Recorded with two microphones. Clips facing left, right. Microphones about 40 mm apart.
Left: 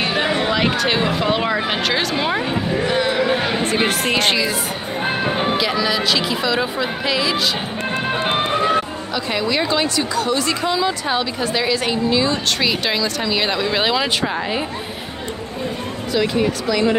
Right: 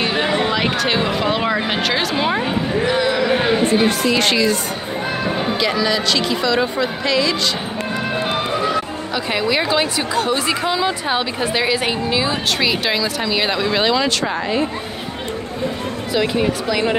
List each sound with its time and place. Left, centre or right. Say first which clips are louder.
0.0 s a sound: right 1 dB; centre
0.4 s speech: even; centre
5.6 s speech: right 1 dB; centre
8.3 s music: left 4 dB; left
9.1 s a woman's voice: right 1 dB; centre
16.1 s a woman's voice: even; centre